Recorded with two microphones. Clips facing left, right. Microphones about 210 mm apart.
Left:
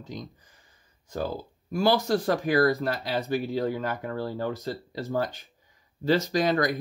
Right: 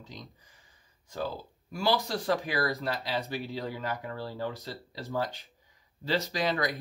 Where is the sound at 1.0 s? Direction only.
45° left (ahead or behind).